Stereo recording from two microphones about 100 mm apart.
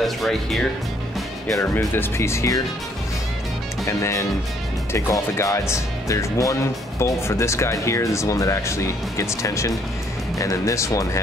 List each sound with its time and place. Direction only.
0.0 s speech: centre (ahead or behind)
1.6 s speech: 25° left (ahead or behind)
3.8 s speech: 30° left (ahead or behind)